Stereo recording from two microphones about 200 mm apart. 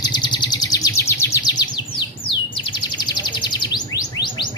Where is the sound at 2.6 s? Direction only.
25° left (ahead or behind).